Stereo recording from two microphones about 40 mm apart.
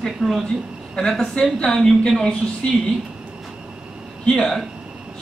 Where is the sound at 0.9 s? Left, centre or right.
Centre.